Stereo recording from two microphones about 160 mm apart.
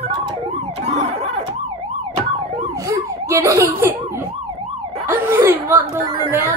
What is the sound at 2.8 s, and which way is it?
Emergency vehicle, 20° right (ahead or behind).